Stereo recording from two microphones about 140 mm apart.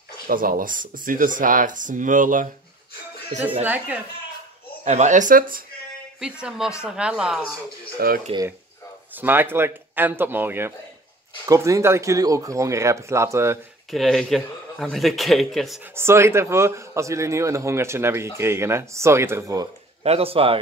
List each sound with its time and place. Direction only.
0.3 s speech: 85° right; by 2.5 s 70° right (ahead or behind)
3.6 s speech: 10° right (ahead or behind)
4.8 s speech: 60° right (ahead or behind); by 5.6 s 80° right
6.8 s a man's voice: 5° right (ahead or behind)
8.0 s speech: 90° right
9.1 s a man's voice: 15° right (ahead or behind)
13.8 s a man's voice: centre (ahead or behind)
15.9 s a man's voice: 20° right (ahead or behind)
20.0 s speech: 45° right (ahead or behind)